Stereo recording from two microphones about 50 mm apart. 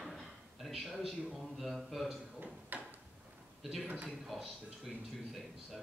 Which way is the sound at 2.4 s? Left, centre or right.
Right.